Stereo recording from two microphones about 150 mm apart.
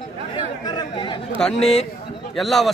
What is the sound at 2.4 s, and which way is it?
Speech, centre (ahead or behind).